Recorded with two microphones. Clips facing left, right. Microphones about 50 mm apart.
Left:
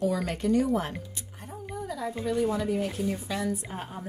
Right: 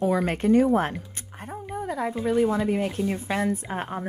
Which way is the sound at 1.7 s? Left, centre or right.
Right.